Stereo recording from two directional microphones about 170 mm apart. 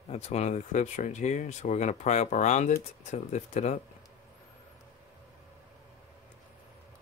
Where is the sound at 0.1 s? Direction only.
40° left (ahead or behind).